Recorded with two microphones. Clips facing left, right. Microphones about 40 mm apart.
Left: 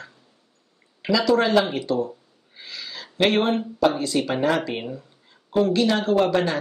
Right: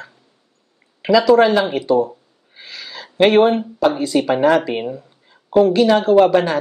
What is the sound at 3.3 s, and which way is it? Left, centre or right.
Speech, centre.